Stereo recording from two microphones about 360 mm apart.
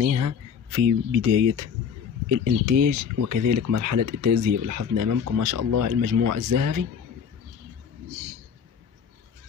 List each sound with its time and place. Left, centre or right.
0.0 s speech: right
2.8 s speech: right